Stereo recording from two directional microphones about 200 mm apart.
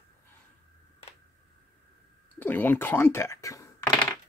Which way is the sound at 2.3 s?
10° left (ahead or behind).